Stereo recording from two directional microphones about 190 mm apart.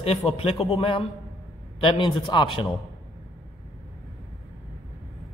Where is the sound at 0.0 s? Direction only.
30° left (ahead or behind).